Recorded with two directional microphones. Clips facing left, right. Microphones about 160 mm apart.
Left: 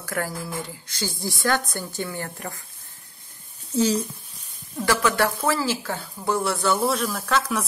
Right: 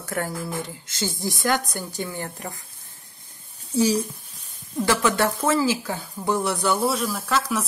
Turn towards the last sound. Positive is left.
turn(degrees=-5)  # may be behind; listen again after turning